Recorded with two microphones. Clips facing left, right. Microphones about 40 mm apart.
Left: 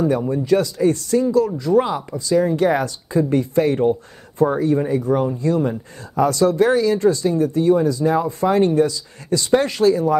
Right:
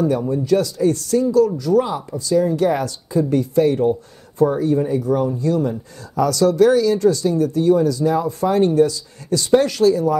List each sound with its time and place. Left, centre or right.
0.2 s speech: left